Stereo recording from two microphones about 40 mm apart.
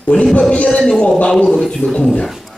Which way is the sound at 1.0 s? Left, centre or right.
Left.